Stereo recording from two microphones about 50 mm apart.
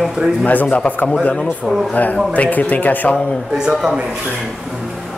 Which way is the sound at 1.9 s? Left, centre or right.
Left.